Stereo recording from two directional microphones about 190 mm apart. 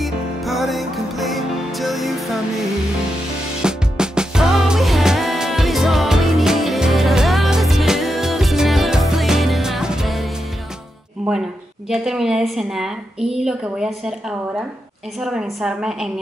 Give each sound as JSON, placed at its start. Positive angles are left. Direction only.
{"t": 0.0, "sound": "music", "side_deg": 0}
{"t": 3.6, "sound": "music", "side_deg": -5}
{"t": 11.9, "sound": "a woman's voice", "side_deg": 0}